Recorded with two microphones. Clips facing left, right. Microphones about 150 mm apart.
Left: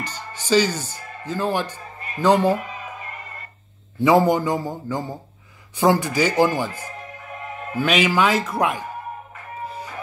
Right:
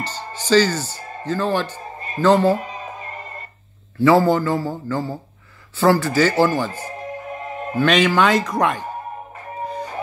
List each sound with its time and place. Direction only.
0.0 s speech: 10° left (ahead or behind)
0.9 s music: 35° right (ahead or behind)
1.2 s a man's voice: 10° left (ahead or behind)
2.0 s a sound: 35° right (ahead or behind)
2.2 s a man's voice: 15° left (ahead or behind)
2.5 s music: 35° right (ahead or behind)
4.0 s a man's voice: 15° left (ahead or behind)
6.7 s music: 35° right (ahead or behind)
7.7 s a man's voice: 10° left (ahead or behind)